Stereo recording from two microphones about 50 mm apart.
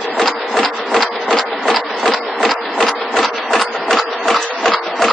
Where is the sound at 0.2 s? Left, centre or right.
Centre.